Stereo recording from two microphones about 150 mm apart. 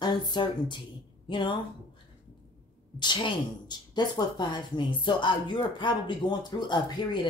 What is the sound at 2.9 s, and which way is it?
A woman's voice, 30° left (ahead or behind).